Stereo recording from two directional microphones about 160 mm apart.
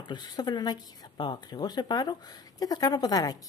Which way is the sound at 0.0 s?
25° left (ahead or behind).